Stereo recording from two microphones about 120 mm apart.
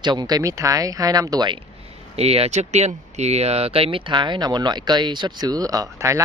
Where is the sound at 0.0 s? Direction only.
35° right (ahead or behind).